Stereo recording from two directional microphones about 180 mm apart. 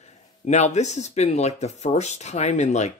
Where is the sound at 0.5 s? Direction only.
40° left (ahead or behind).